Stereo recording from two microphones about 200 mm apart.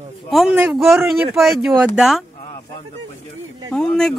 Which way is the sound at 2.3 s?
40° left (ahead or behind).